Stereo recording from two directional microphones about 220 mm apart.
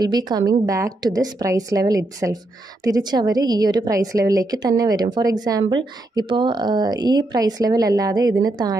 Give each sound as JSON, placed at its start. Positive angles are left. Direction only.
{"t": 0.0, "sound": "a woman's voice", "side_deg": -20}